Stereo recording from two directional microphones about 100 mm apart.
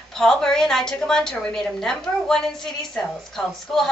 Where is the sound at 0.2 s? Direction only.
5° left (ahead or behind).